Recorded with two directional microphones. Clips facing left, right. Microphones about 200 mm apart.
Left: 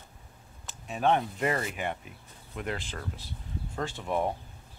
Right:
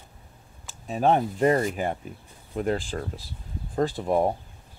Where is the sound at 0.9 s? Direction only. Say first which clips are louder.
Right 4 dB; 35° right (ahead or behind).